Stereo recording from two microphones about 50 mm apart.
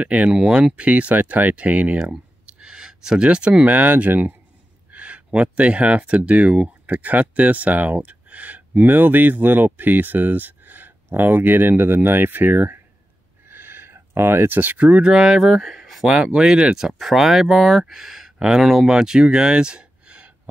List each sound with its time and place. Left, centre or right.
0.0 s speech: right
0.4 s speech: centre
0.8 s speech: right
2.4 s a sound: centre
3.3 s speech: right
3.6 s speech: right
13.5 s a sound: right
14.1 s speech: right
15.1 s speech: centre
16.7 s speech: centre; by 20.3 s right